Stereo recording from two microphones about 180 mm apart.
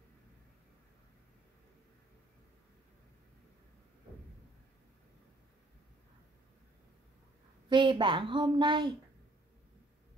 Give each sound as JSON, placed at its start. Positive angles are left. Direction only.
{"t": 7.7, "sound": "a woman's voice", "side_deg": -25}